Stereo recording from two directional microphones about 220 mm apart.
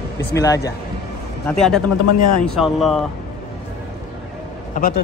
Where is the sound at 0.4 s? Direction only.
15° left (ahead or behind).